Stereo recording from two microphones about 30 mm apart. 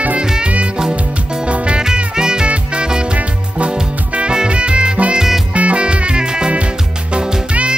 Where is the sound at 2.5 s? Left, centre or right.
Right.